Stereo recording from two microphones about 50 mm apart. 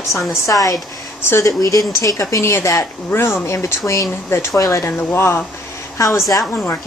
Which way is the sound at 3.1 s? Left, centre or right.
Left.